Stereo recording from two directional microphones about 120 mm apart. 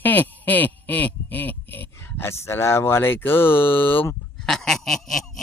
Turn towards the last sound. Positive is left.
turn(degrees=0)  # may be behind; listen again after turning